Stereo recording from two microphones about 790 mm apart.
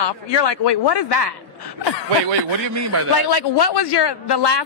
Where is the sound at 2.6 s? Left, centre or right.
Right.